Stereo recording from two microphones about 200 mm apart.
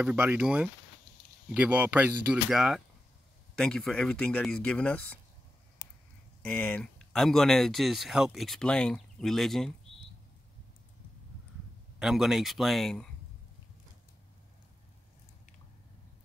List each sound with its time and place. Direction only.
0.0 s speech: 10° right (ahead or behind)
6.4 s speech: 5° left (ahead or behind)
12.0 s speech: centre (ahead or behind)